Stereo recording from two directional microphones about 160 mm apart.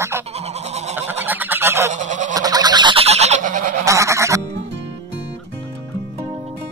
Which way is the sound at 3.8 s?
20° right (ahead or behind).